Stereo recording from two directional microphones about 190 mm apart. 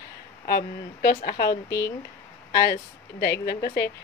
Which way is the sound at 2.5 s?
60° left (ahead or behind).